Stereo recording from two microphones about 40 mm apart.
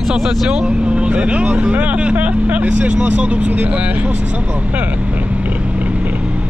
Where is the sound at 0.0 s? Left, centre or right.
Centre; by 4.2 s right.